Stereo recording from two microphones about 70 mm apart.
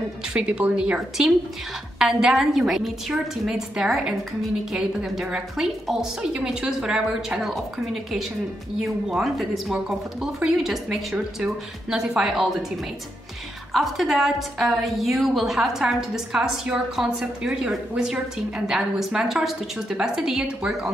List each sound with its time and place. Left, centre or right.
0.3 s speech: centre
2.0 s a woman's voice: centre
13.7 s a woman's voice: centre